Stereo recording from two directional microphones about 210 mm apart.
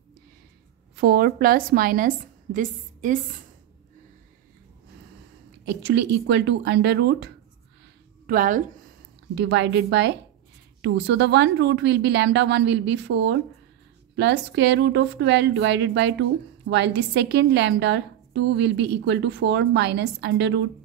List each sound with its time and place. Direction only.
1.0 s a woman's voice: 45° right (ahead or behind)
5.8 s a woman's voice: 55° right (ahead or behind)
8.3 s a woman's voice: 40° right (ahead or behind)
9.3 s a woman's voice: 55° right (ahead or behind)